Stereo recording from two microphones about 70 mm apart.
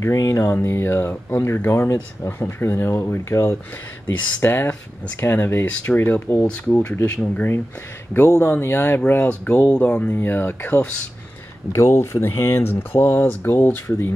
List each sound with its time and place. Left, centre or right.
0.0 s speech: left
0.6 s speech: left
6.5 s speech: left
8.5 s speech: left
11.7 s speech: left